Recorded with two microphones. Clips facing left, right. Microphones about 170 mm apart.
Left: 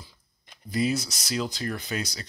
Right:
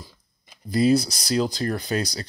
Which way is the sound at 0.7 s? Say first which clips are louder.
Right 7 dB; 35° right (ahead or behind).